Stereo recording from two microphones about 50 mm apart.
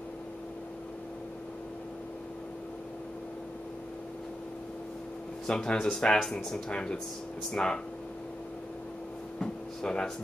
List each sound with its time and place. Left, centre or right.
5.5 s speech: centre
9.4 s air conditioning: centre